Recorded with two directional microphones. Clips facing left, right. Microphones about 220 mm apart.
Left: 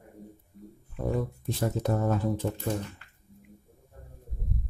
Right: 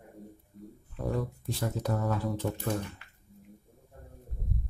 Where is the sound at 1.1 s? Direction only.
20° left (ahead or behind).